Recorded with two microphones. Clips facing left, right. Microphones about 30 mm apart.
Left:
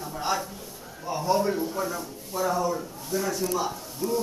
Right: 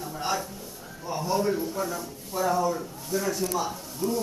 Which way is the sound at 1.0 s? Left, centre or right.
Centre.